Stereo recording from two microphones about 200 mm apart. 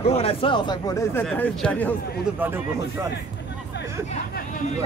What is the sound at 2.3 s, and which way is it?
Speech, 10° right (ahead or behind).